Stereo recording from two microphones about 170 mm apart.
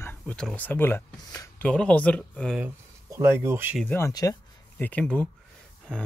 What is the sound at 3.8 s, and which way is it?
Speech, 15° left (ahead or behind).